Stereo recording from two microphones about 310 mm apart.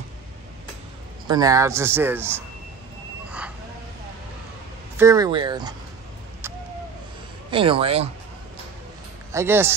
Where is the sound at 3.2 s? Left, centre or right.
Centre.